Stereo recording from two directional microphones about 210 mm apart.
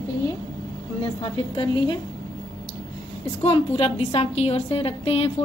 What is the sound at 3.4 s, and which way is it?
A woman's voice, 25° left (ahead or behind).